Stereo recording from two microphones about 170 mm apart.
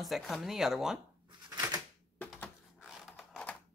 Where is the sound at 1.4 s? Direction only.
20° right (ahead or behind).